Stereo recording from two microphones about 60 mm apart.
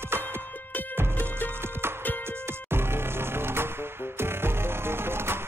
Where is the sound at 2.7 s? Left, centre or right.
Right.